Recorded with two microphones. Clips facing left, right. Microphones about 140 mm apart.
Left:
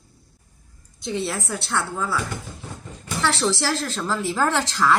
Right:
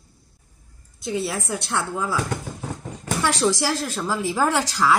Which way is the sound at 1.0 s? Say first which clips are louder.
Right 1 dB; 5° right (ahead or behind).